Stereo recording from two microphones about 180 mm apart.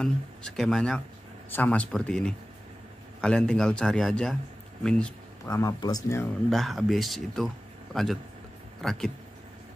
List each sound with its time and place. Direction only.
0.0 s speech: 5° left (ahead or behind)
5.4 s speech: 20° left (ahead or behind)
6.5 s speech: centre (ahead or behind)